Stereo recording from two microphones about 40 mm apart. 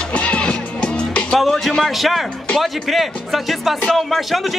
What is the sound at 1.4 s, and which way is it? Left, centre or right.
Speech, centre.